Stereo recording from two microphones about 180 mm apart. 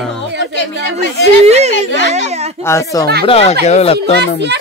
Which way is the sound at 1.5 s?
40° right (ahead or behind).